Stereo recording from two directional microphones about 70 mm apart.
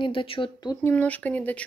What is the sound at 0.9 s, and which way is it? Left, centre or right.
Speech, left.